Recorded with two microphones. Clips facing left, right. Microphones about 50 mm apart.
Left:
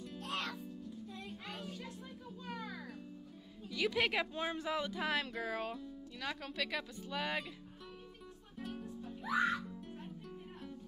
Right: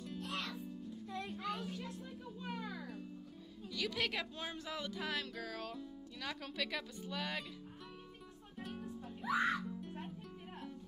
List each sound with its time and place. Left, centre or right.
0.2 s music: left
1.0 s music: right
3.6 s speech: left
5.8 s speech: centre
8.5 s music: centre